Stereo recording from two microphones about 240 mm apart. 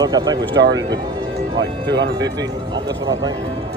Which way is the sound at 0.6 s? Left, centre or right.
Right.